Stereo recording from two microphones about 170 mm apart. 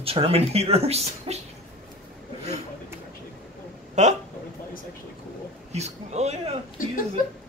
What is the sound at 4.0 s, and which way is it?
Speech, 45° right (ahead or behind).